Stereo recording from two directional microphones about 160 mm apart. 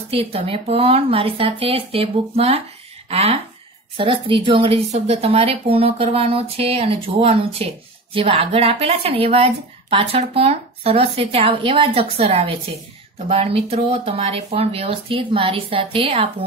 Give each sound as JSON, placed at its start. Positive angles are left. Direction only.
{"t": 0.1, "sound": "speech", "side_deg": -35}